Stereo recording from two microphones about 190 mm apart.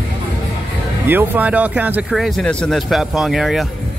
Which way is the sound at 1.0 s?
10° right (ahead or behind).